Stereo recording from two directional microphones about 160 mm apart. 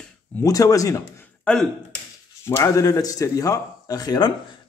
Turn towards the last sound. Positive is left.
turn(degrees=25)  # may be behind; listen again after turning